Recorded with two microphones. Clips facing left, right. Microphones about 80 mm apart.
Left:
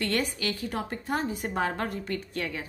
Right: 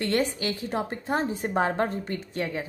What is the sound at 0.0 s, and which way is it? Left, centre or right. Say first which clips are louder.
A woman's voice: right 3 dB; right.